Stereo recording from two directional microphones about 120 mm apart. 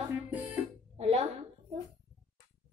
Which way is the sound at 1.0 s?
65° right (ahead or behind).